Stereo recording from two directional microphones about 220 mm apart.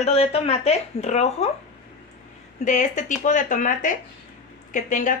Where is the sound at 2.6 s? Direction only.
35° left (ahead or behind).